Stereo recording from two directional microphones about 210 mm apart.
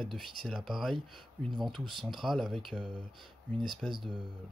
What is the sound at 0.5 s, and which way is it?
Speech, centre (ahead or behind).